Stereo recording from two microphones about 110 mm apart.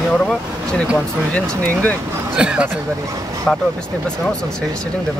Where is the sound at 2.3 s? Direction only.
10° right (ahead or behind).